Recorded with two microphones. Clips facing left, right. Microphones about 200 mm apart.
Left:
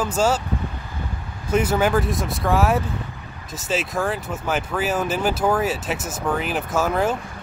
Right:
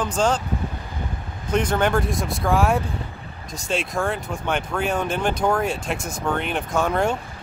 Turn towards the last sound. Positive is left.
turn(degrees=5)  # may be behind; listen again after turning